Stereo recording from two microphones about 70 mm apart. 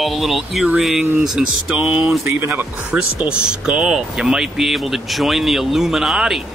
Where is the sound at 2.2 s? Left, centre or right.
Right.